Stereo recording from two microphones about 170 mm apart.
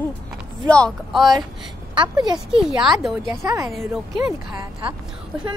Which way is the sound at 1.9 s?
25° right (ahead or behind).